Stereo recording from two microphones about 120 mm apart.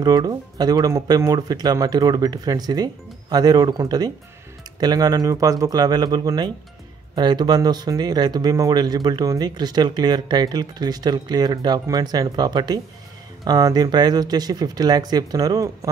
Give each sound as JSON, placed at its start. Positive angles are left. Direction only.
{"t": 0.0, "sound": "speech", "side_deg": -35}